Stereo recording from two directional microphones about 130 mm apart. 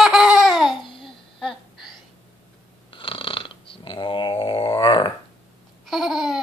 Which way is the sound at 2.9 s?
40° left (ahead or behind).